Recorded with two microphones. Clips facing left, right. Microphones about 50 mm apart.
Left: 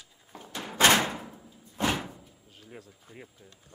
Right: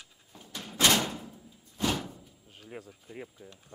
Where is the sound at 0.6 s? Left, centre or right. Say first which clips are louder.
Left 4 dB; left.